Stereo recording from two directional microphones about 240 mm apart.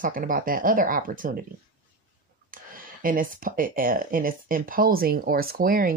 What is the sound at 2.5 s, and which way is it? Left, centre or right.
Speech, right.